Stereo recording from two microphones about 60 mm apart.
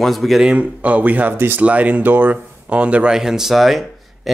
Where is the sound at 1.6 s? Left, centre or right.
Right.